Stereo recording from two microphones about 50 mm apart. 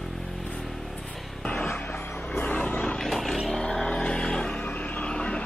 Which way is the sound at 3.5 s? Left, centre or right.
Centre.